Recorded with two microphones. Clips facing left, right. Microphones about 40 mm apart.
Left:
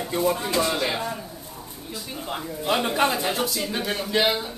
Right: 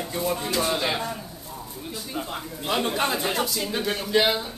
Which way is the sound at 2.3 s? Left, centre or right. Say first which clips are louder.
Left 4 dB; centre.